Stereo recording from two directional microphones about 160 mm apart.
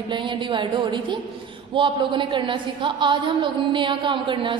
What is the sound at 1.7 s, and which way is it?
A woman's voice, 30° right (ahead or behind).